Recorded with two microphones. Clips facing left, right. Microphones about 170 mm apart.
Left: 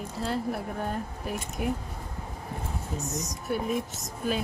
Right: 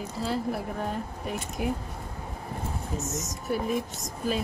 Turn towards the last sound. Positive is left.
turn(degrees=0)  # may be behind; listen again after turning